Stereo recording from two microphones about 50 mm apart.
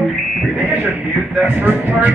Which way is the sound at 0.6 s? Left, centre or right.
Right.